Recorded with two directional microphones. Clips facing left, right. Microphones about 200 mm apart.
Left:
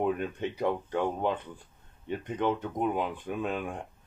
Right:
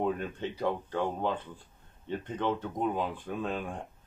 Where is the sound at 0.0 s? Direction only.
15° left (ahead or behind).